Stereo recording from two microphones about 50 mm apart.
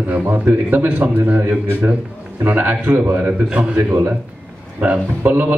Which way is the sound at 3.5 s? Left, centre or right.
Right.